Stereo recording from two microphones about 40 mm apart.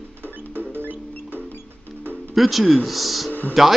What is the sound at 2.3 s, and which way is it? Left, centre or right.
Speech, centre.